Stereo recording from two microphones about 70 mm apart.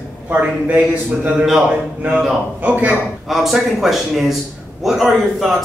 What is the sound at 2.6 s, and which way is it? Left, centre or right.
Speech, right.